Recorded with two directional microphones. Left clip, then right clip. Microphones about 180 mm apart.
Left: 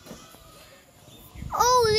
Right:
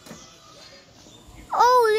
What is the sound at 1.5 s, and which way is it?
Babbling, 50° right (ahead or behind).